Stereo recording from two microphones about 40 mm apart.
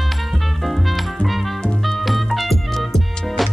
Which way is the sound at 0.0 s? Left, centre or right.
Centre.